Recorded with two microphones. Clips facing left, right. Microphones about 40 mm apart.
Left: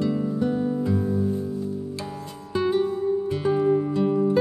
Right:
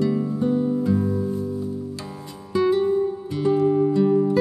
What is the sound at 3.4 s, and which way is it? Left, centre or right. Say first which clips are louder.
Music: right 4 dB; centre.